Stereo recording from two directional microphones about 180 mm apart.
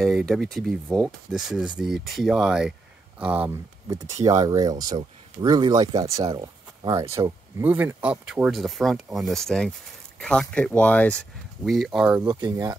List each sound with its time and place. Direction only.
0.0 s speech: centre (ahead or behind)
12.3 s speech: 20° right (ahead or behind)